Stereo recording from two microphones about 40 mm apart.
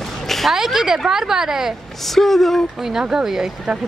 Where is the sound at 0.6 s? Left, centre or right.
Centre.